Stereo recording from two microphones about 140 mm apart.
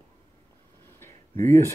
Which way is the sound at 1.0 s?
15° left (ahead or behind).